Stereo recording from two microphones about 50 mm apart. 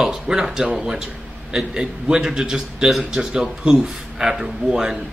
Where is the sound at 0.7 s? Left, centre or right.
Centre.